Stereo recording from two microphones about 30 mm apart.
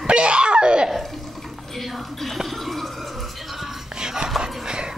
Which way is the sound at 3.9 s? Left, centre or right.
Right.